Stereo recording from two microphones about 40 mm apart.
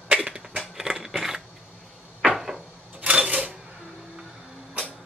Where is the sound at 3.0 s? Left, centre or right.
Right.